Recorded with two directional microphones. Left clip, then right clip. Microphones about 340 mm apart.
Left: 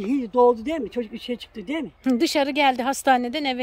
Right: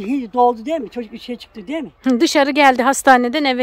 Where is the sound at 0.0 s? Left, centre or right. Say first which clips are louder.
Right 3 dB; centre.